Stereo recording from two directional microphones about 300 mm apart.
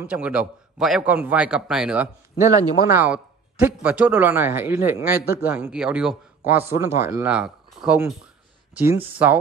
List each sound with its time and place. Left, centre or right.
0.0 s a man's voice: centre
2.7 s a man's voice: left
3.0 s a man's voice: centre